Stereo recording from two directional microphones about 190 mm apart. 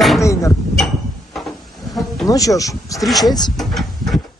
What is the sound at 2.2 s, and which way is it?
Speech, 20° left (ahead or behind).